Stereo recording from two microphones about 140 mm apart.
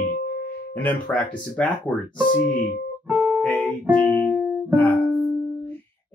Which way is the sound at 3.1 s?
15° right (ahead or behind).